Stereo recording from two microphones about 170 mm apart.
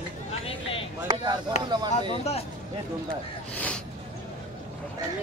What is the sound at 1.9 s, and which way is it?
Speech, 35° left (ahead or behind).